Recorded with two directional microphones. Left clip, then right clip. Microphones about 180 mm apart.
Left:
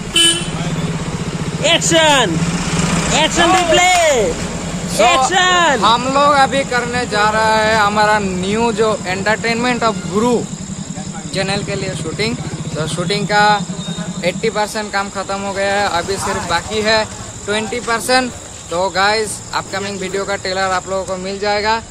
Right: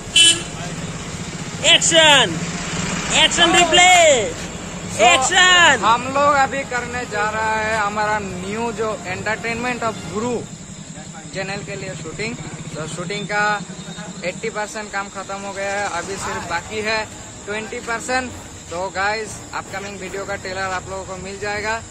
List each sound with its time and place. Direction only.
1.6 s speech: centre (ahead or behind)
5.8 s speech: 15° right (ahead or behind)
16.5 s speech: 20° right (ahead or behind)
17.5 s speech: 5° right (ahead or behind)